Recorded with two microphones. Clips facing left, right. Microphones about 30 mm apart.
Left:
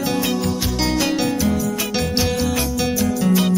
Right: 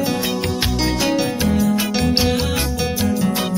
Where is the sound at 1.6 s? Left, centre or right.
Right.